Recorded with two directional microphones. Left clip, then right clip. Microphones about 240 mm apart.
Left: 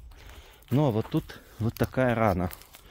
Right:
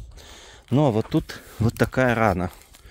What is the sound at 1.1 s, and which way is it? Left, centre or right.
Speech, right.